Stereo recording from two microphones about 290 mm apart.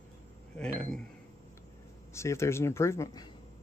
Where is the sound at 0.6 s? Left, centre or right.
Centre.